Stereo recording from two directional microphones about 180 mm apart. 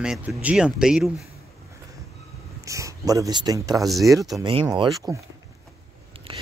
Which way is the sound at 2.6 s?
15° right (ahead or behind).